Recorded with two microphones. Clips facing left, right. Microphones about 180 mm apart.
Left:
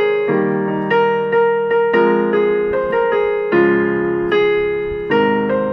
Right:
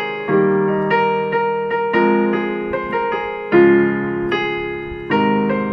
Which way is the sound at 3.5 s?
45° left (ahead or behind).